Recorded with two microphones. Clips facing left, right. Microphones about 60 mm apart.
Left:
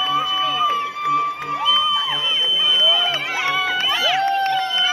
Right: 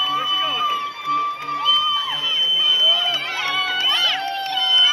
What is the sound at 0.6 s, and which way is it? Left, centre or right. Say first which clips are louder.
Crowd: left 3 dB; left.